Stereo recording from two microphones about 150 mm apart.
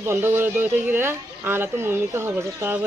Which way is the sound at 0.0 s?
15° right (ahead or behind).